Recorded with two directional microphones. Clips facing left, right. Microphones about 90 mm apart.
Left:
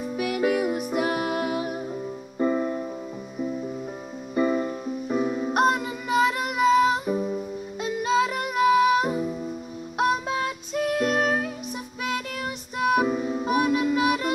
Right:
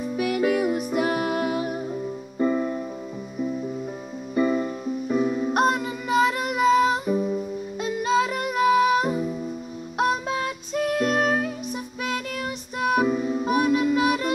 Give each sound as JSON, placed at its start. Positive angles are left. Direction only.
{"t": 0.2, "sound": "music", "side_deg": 10}
{"t": 2.3, "sound": "music", "side_deg": 20}
{"t": 4.4, "sound": "music", "side_deg": 25}